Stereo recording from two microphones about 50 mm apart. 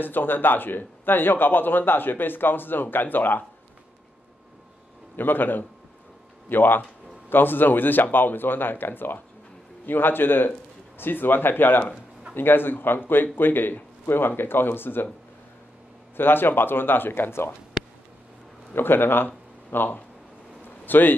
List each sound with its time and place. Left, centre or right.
0.0 s a man's voice: left
5.1 s a man's voice: left
16.2 s a man's voice: left
18.7 s speech: left
20.6 s a sound: left